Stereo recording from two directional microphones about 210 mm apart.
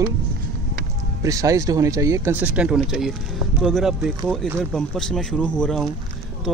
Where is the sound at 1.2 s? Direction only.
15° right (ahead or behind).